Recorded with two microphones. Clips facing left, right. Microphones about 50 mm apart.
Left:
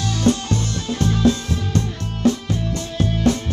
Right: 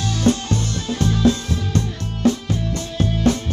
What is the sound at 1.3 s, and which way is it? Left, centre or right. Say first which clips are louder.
Music: even; right.